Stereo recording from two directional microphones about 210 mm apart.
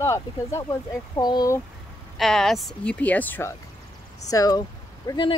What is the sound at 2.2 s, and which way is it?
Speech, centre (ahead or behind).